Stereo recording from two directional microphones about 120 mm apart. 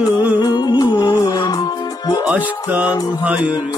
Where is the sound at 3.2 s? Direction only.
10° right (ahead or behind).